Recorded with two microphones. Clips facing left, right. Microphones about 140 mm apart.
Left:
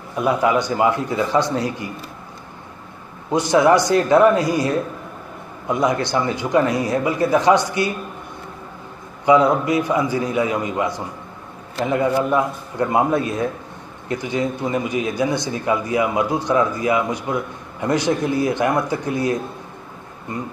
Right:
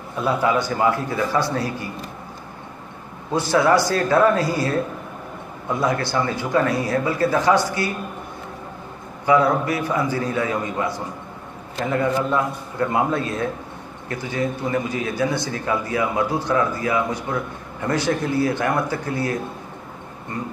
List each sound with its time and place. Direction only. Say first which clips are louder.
0.2 s speech: left 2 dB; 15° left (ahead or behind)
3.3 s speech: left 3 dB; 20° left (ahead or behind)
9.2 s a man's voice: left 3 dB; 20° left (ahead or behind)